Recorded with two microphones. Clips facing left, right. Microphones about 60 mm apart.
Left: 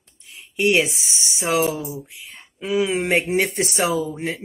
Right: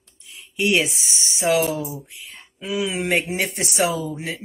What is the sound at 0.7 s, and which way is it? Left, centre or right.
Speech, left.